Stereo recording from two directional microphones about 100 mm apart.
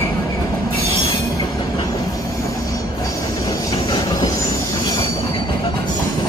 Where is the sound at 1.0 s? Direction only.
45° left (ahead or behind).